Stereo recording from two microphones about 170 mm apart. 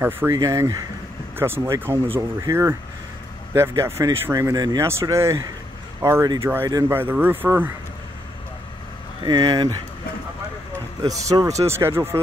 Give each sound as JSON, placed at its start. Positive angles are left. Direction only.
{"t": 0.0, "sound": "speech", "side_deg": -15}
{"t": 3.8, "sound": "speech", "side_deg": -15}
{"t": 9.2, "sound": "speech", "side_deg": -25}
{"t": 11.0, "sound": "speech", "side_deg": -20}